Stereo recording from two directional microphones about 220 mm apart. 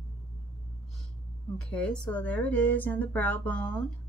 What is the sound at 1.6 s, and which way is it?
Speech, 5° left (ahead or behind).